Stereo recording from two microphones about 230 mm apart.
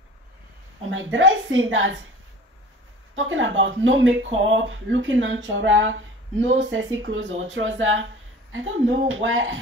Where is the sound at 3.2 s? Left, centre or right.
Right.